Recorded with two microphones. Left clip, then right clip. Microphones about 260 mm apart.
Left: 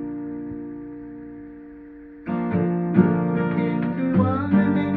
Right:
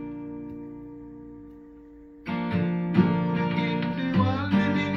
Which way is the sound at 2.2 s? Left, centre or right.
Right.